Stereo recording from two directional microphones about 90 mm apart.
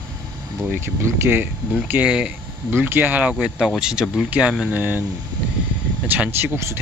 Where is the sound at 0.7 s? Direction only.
25° right (ahead or behind).